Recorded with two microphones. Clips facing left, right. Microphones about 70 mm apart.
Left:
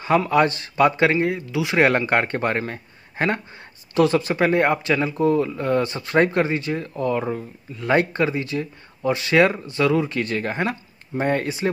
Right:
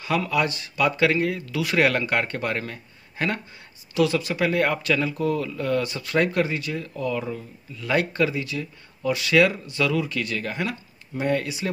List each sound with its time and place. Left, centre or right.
0.0 s speech: left